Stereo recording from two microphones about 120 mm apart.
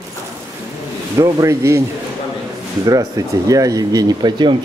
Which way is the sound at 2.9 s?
30° right (ahead or behind).